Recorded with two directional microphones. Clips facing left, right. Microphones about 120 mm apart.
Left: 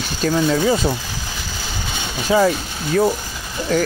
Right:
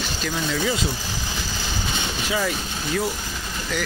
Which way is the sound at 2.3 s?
40° left (ahead or behind).